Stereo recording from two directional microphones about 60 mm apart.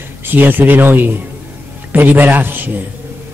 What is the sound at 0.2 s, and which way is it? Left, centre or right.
A man's voice, right.